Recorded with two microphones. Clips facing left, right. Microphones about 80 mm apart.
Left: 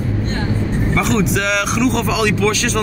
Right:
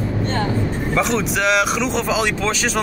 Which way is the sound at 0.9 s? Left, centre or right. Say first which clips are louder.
Left 2 dB; centre.